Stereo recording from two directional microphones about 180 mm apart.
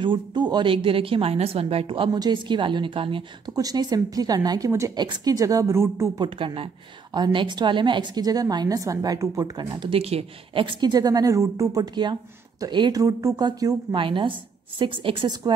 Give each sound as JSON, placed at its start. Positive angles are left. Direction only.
{"t": 0.0, "sound": "a woman's voice", "side_deg": -25}
{"t": 6.2, "sound": "a woman's voice", "side_deg": -30}